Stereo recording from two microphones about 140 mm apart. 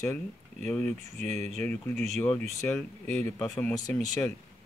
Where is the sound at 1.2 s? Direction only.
55° right (ahead or behind).